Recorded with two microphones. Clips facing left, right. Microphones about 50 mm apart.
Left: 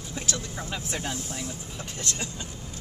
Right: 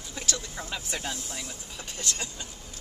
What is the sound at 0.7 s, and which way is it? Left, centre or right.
Speech, centre.